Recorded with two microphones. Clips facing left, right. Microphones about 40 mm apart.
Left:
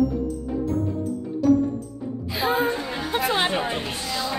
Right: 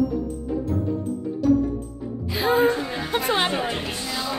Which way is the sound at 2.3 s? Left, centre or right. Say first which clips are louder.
Right 3 dB; centre.